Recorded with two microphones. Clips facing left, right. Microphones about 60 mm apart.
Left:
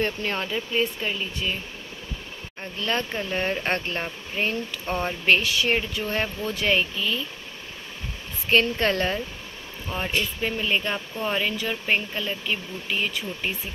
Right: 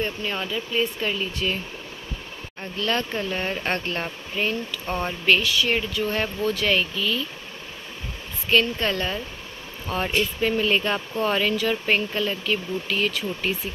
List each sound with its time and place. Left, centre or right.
0.0 s speech: left
1.0 s speech: centre
2.8 s speech: left
8.5 s speech: left
9.9 s speech: centre